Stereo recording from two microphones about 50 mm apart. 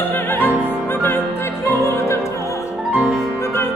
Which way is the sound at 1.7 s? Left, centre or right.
Left.